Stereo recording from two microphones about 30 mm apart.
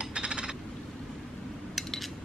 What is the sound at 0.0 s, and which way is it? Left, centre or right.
Coin, right.